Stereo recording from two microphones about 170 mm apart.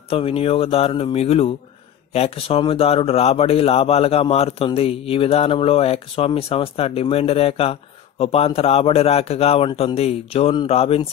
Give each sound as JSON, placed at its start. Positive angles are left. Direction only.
{"t": 0.1, "sound": "speech", "side_deg": 35}